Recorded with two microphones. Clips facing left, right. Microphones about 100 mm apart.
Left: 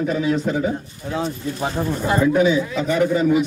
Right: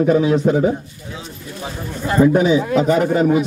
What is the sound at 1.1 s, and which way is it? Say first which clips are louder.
Speech: left 9 dB; 55° left (ahead or behind).